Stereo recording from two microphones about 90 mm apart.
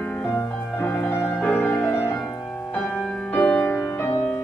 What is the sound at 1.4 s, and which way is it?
Music, 15° left (ahead or behind).